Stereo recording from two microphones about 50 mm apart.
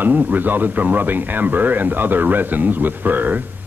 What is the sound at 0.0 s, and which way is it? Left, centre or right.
Speech, right.